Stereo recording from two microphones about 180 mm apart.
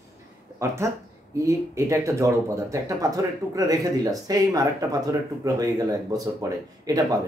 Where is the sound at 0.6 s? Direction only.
15° right (ahead or behind).